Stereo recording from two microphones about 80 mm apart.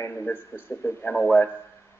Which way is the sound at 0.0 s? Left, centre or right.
Left.